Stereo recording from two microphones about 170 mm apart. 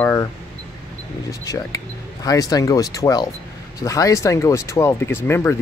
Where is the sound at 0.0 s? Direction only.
15° left (ahead or behind).